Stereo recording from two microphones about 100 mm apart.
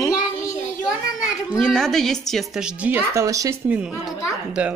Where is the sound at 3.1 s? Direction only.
35° right (ahead or behind).